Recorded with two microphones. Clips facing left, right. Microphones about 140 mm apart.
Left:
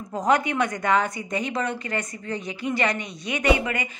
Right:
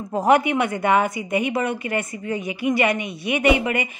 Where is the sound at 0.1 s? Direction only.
20° right (ahead or behind).